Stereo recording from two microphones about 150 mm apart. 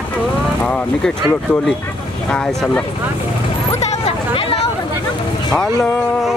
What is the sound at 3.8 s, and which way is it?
Hubbub, 45° left (ahead or behind).